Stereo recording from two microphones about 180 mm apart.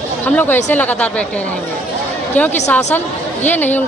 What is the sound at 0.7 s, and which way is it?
Speech, 10° left (ahead or behind).